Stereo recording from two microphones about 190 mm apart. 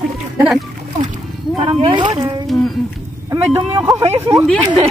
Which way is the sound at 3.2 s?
15° right (ahead or behind).